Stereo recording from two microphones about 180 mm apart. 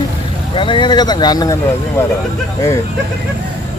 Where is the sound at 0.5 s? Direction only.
30° left (ahead or behind).